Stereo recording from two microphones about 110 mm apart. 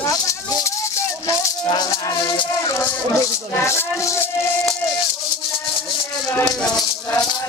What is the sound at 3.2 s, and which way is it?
Speech, 25° left (ahead or behind).